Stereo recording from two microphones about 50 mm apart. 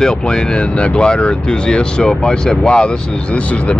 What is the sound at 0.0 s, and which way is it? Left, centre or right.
Speech, centre.